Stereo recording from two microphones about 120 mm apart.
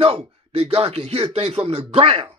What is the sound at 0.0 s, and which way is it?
Speech, 55° right (ahead or behind).